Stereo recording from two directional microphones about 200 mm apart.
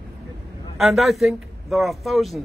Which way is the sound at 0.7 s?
Centre (ahead or behind).